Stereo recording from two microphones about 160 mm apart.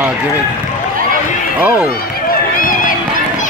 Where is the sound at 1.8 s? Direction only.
65° left (ahead or behind).